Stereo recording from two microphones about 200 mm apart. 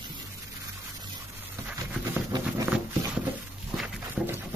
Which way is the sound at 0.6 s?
20° right (ahead or behind).